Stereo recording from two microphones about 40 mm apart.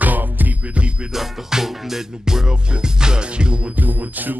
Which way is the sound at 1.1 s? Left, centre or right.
Centre.